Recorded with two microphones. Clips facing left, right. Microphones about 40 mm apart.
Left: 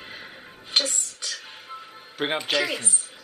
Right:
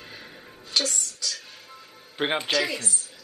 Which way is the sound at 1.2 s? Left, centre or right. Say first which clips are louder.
Right 1 dB; left.